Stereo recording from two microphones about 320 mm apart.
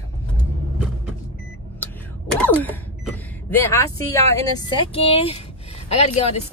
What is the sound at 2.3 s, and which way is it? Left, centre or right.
Speech, centre.